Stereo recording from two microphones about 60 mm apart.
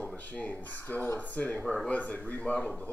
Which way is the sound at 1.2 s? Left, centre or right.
Left.